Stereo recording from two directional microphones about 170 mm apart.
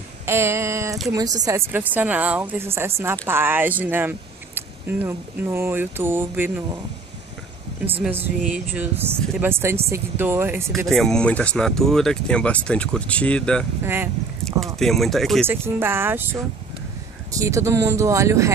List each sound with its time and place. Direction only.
0.3 s a sound: 15° right (ahead or behind)
1.1 s a woman's voice: 20° right (ahead or behind)
8.0 s a woman's voice: 10° right (ahead or behind)
10.9 s speech: centre (ahead or behind)
13.8 s a woman's voice: 15° right (ahead or behind)
14.4 s a sound: centre (ahead or behind)
14.8 s speech: centre (ahead or behind)
15.4 s a woman's voice: 15° right (ahead or behind)